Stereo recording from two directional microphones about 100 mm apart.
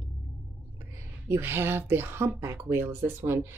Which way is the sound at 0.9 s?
25° right (ahead or behind).